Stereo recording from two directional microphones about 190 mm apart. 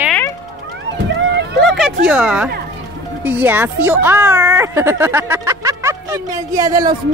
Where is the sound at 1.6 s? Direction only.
Centre (ahead or behind).